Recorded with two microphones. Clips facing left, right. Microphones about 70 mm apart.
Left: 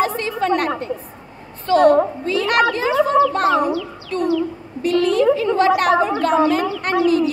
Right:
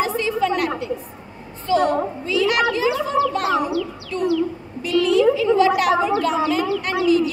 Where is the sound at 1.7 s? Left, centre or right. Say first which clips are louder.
Left 6 dB; left.